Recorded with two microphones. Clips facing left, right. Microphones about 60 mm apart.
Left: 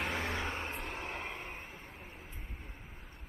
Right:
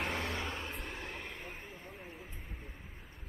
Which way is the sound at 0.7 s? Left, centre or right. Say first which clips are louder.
Left 3 dB; left.